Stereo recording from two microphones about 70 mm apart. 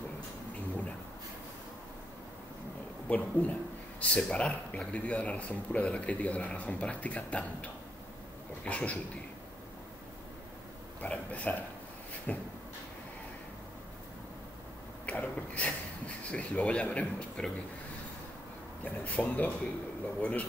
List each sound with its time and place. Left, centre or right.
3.1 s a man's voice: left
11.0 s a man's voice: left
15.0 s a sound: centre
16.3 s speech: centre
18.9 s a man's voice: left